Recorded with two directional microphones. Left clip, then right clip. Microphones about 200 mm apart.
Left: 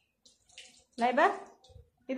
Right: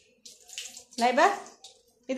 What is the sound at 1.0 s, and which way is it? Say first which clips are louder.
Speech: right 4 dB; 15° right (ahead or behind).